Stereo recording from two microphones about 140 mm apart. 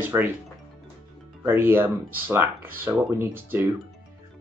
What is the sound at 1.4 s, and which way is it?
Speech, 15° right (ahead or behind).